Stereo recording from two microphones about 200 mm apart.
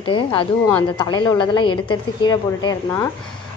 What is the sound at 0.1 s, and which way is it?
A woman's voice, 25° left (ahead or behind).